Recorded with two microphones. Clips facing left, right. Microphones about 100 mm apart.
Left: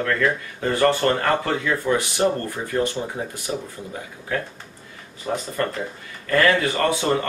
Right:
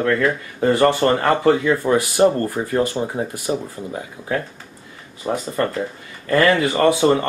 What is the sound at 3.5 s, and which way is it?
Speech, 30° right (ahead or behind).